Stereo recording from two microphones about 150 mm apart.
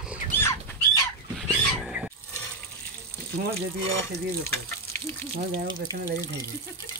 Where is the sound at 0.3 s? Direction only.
15° left (ahead or behind).